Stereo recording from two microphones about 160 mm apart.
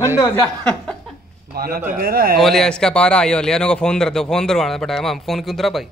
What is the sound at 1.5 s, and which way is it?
Speech, 70° right (ahead or behind).